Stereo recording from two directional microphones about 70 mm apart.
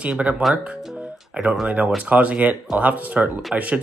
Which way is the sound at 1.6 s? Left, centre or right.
Right.